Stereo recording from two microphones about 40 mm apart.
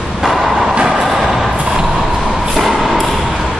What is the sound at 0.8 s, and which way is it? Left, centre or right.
Vehicle, centre.